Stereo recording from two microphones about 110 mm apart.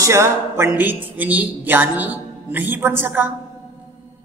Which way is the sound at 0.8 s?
15° right (ahead or behind).